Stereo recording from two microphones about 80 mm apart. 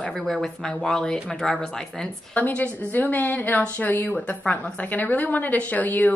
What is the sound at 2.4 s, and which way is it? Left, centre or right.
A woman's voice, centre.